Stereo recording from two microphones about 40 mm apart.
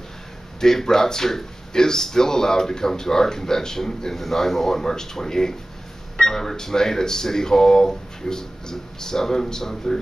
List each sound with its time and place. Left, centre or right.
0.6 s speech: centre